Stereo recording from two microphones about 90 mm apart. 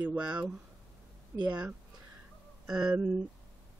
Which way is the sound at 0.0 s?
15° right (ahead or behind).